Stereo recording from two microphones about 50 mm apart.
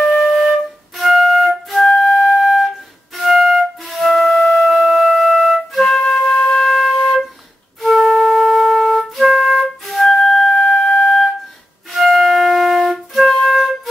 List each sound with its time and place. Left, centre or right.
0.2 s flute: centre
1.9 s flute: centre
2.4 s wind instrument: centre
3.2 s flute: centre